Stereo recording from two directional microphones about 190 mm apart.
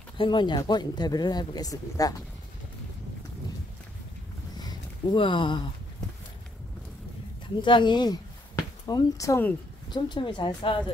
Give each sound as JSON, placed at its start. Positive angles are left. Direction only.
{"t": 0.2, "sound": "speech", "side_deg": 25}
{"t": 4.6, "sound": "a sound", "side_deg": 25}
{"t": 7.6, "sound": "speech", "side_deg": 25}